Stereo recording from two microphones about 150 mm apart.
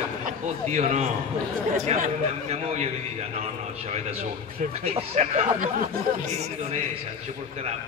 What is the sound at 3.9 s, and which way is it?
Speech, 45° right (ahead or behind).